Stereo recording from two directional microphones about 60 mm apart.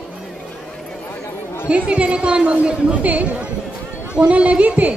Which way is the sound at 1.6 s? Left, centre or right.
Right.